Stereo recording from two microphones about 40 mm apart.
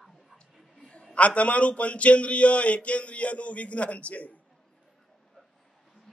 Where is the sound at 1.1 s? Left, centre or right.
Left.